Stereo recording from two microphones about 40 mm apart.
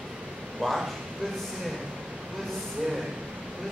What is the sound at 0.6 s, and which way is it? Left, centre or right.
Speech, centre.